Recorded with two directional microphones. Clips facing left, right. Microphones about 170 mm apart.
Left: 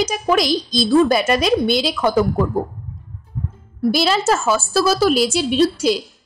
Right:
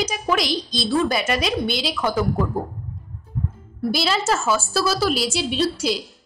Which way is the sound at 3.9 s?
45° left (ahead or behind).